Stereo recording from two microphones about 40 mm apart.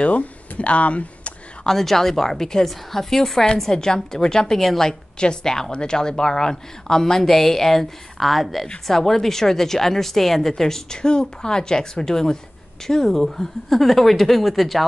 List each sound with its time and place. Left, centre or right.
0.0 s speech: left
1.7 s a woman's voice: centre